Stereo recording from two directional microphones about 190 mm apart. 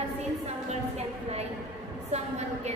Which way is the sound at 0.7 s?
35° right (ahead or behind).